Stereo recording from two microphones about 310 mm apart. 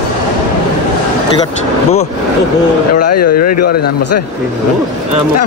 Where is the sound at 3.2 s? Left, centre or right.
Left.